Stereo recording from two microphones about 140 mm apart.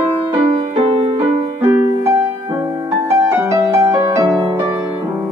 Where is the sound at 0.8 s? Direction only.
45° right (ahead or behind).